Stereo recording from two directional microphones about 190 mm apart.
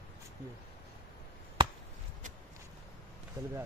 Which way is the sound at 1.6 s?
25° right (ahead or behind).